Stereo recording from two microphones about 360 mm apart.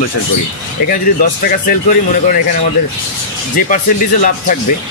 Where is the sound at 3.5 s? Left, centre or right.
Left.